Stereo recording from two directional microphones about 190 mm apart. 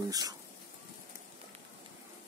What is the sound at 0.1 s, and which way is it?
Speech, 20° right (ahead or behind).